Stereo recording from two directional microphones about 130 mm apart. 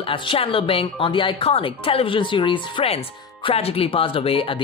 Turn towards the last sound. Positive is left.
turn(degrees=45)  # may be behind; listen again after turning